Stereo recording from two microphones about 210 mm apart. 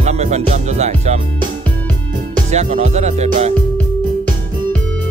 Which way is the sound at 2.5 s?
35° right (ahead or behind).